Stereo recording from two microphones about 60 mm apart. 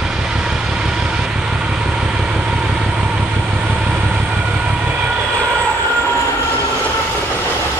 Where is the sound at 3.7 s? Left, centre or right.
Centre.